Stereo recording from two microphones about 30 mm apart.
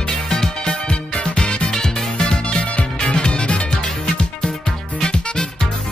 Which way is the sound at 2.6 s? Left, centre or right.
Left.